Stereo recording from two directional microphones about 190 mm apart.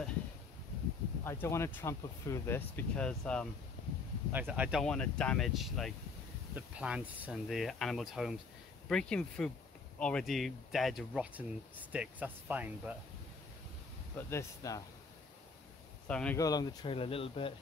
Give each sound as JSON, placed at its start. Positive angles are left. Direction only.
{"t": 1.2, "sound": "speech", "side_deg": 15}
{"t": 4.3, "sound": "speech", "side_deg": -10}
{"t": 14.1, "sound": "speech", "side_deg": 15}
{"t": 16.1, "sound": "speech", "side_deg": 5}
{"t": 16.3, "sound": "speech", "side_deg": 20}